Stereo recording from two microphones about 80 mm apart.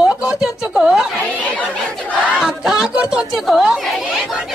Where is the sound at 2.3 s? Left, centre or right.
Centre.